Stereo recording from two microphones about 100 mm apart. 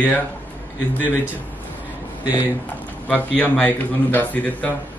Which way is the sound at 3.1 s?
15° left (ahead or behind).